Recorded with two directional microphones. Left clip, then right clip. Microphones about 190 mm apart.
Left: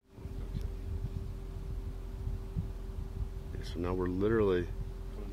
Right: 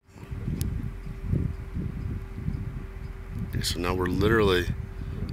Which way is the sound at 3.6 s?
15° right (ahead or behind).